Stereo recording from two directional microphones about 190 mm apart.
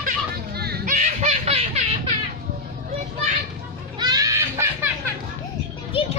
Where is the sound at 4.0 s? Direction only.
20° right (ahead or behind).